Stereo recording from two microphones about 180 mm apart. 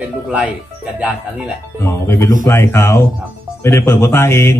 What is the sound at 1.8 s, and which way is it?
Speech, 15° left (ahead or behind).